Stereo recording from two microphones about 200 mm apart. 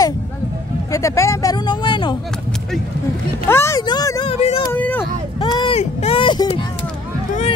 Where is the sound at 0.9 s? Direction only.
15° left (ahead or behind).